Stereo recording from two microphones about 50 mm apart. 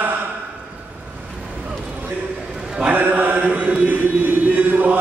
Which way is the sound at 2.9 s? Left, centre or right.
Right.